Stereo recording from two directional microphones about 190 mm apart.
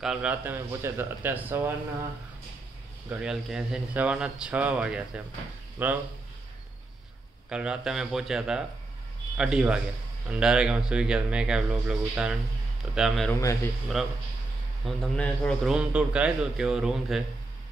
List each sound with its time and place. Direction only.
0.0 s speech: 5° right (ahead or behind)
3.1 s a man's voice: 5° right (ahead or behind)
7.4 s a man's voice: 5° right (ahead or behind)
13.3 s speech: 15° left (ahead or behind)
14.0 s a man's voice: centre (ahead or behind)